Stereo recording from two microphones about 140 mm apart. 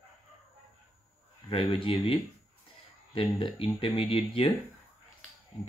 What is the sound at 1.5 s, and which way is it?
Speech, 40° left (ahead or behind).